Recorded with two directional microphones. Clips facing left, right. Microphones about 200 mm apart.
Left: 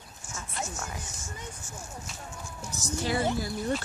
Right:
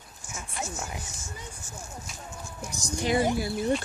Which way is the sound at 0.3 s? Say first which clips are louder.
Right 1 dB; 15° right (ahead or behind).